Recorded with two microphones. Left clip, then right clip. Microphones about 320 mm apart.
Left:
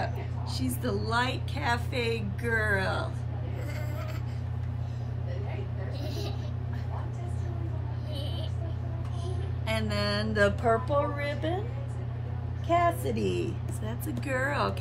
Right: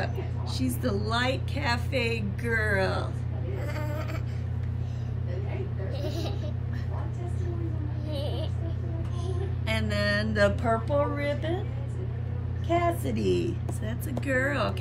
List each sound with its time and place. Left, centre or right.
0.6 s speech: centre
6.0 s vehicle: centre
8.1 s a sound: centre
9.7 s music: centre
12.6 s speech: centre